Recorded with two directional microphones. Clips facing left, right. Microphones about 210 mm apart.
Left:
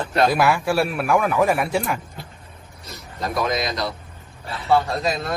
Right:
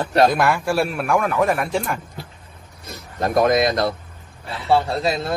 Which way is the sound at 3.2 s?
55° right (ahead or behind).